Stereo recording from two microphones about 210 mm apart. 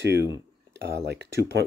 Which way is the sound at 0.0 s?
55° right (ahead or behind).